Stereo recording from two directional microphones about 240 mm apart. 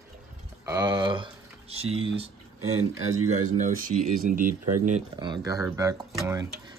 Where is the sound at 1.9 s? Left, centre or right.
Right.